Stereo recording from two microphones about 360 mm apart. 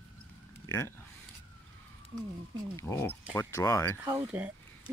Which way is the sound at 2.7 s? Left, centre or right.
Centre.